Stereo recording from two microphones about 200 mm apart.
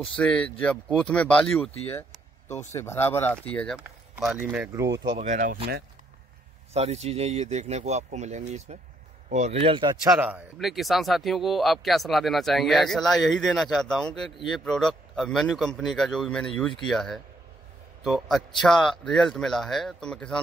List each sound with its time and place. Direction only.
0.1 s speech: 5° left (ahead or behind); by 5.0 s 15° right (ahead or behind)
5.1 s speech: 35° right (ahead or behind)
6.7 s speech: 35° right (ahead or behind); by 20.3 s 5° left (ahead or behind)